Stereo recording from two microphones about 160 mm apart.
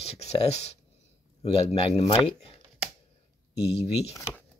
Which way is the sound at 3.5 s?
90° left.